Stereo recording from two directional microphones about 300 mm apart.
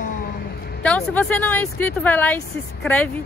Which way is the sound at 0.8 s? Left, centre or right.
Centre.